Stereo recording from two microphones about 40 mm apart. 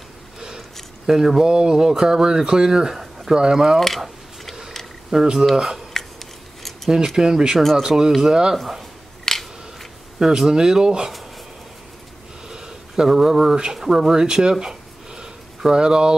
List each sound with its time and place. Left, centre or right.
1.0 s speech: centre
5.1 s speech: centre
5.9 s a sound: centre
7.2 s speech: centre
7.5 s speech: centre
7.8 s speech: centre
8.5 s speech: centre
9.2 s scissors: centre
10.1 s speech: centre
12.4 s a sound: centre
13.7 s speech: centre